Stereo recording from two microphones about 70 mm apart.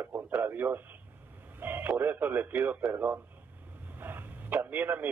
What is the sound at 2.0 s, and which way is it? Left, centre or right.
A man's voice, right.